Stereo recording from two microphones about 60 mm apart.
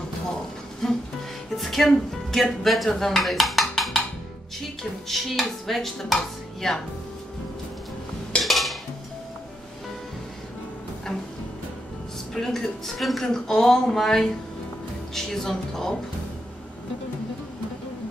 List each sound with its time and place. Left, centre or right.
1.5 s speech: centre
5.0 s dishes: centre
8.4 s music: centre
12.4 s speech: centre